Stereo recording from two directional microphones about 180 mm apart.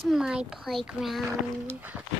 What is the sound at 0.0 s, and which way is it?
A child's voice, centre (ahead or behind).